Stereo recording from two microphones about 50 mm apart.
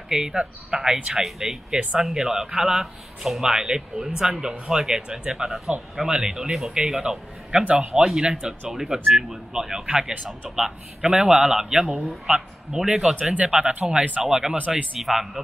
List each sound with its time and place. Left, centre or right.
0.1 s speech: centre
1.2 s speech: centre
1.7 s speech: right
2.0 s speech: centre
13.2 s speech: right
13.5 s speech: centre
14.2 s speech: centre